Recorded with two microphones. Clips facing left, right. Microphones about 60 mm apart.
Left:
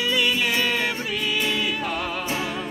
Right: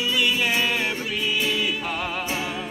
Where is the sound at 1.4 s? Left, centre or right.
Centre.